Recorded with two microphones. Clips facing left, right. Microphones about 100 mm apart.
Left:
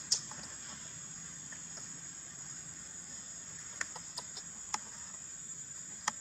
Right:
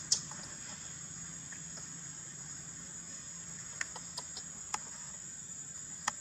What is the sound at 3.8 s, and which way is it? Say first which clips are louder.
Chicken: left 1 dB; centre (ahead or behind).